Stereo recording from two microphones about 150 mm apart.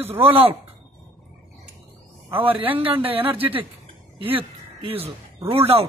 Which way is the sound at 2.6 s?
35° right (ahead or behind).